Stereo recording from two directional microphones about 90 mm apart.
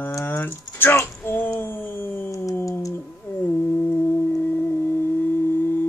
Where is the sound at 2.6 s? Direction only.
35° left (ahead or behind).